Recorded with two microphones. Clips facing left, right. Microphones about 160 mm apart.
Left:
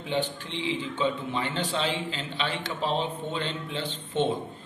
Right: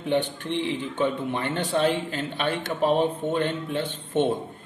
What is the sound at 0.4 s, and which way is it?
A man's voice, 55° right (ahead or behind).